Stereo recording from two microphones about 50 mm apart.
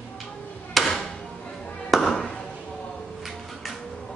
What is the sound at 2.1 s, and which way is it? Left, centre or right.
Chop, centre.